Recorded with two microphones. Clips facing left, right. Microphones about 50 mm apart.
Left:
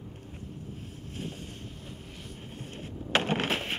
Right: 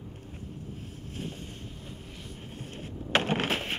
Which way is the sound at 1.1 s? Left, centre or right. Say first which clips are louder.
Even; centre.